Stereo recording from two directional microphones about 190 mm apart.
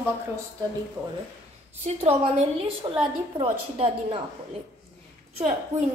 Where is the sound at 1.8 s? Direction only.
30° right (ahead or behind).